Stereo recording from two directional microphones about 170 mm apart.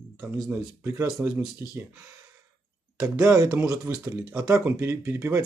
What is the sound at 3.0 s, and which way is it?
Speech, 5° right (ahead or behind).